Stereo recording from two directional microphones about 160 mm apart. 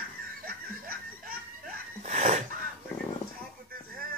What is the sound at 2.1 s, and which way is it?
Wheeze, 50° right (ahead or behind).